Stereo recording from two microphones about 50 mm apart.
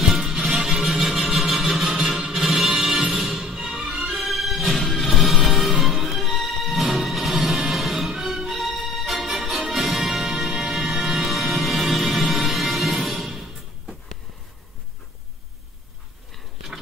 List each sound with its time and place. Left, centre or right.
0.2 s music: centre
3.4 s music: centre